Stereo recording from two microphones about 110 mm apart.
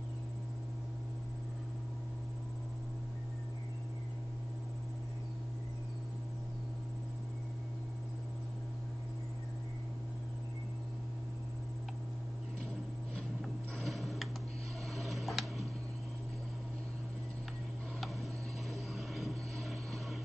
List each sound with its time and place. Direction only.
13.7 s tick-tock: centre (ahead or behind)
15.0 s a sound: centre (ahead or behind)
18.7 s vehicle: centre (ahead or behind)